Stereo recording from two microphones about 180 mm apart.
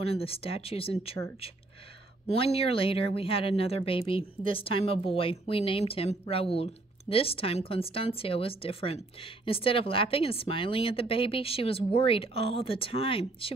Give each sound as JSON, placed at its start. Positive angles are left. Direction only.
{"t": 0.0, "sound": "speech", "side_deg": 30}